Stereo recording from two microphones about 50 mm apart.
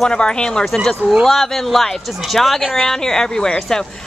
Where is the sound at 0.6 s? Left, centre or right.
Centre.